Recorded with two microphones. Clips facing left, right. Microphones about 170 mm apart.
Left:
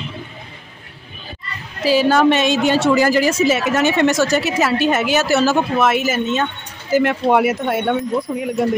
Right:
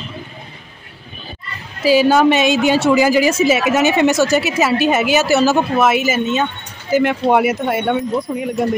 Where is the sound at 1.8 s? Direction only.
5° right (ahead or behind).